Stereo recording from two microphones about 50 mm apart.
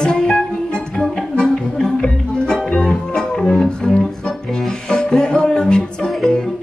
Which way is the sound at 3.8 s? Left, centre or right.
Centre.